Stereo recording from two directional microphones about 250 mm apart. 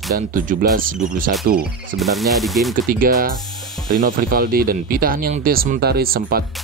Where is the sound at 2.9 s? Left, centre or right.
Right.